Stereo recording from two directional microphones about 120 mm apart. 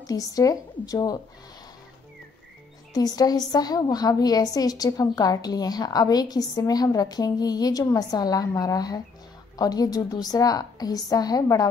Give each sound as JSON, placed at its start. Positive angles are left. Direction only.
{"t": 0.0, "sound": "a woman's voice", "side_deg": 30}
{"t": 2.9, "sound": "a woman's voice", "side_deg": 30}